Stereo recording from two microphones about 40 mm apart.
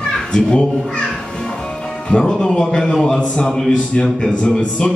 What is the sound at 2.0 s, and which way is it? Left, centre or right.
Speech, centre.